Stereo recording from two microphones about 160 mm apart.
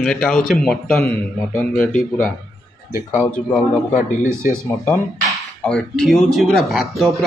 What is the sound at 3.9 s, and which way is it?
Speech, 50° left (ahead or behind).